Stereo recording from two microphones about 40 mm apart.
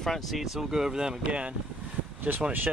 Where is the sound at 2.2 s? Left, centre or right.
Right.